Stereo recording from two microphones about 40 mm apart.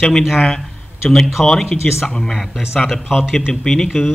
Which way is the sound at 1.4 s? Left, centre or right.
Centre.